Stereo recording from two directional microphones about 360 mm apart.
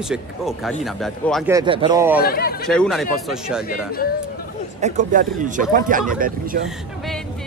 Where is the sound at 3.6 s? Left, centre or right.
Left.